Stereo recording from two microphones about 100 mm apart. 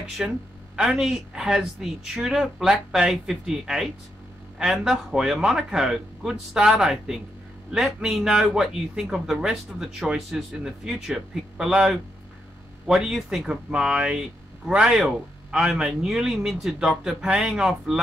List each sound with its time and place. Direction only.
0.2 s speech: 5° right (ahead or behind)